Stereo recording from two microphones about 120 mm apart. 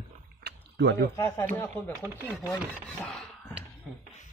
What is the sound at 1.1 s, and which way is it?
Speech, 20° left (ahead or behind).